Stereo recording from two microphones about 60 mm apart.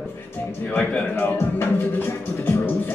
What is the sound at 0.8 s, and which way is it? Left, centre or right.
Speech, left.